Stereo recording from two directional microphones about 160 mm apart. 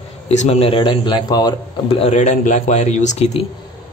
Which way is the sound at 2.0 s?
45° left (ahead or behind).